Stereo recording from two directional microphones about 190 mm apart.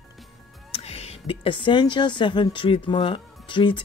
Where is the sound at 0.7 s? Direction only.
30° left (ahead or behind).